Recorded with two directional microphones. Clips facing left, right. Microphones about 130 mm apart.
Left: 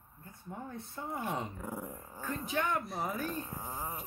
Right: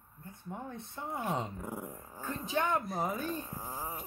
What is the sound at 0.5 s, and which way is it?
Speech, 20° right (ahead or behind).